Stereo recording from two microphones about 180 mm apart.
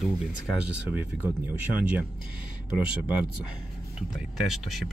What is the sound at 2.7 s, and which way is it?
Speech, 10° right (ahead or behind).